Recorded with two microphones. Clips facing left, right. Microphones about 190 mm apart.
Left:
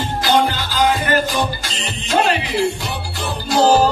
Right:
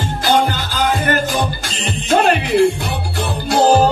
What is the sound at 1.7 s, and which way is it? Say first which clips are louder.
Music: right 4 dB; 55° right (ahead or behind).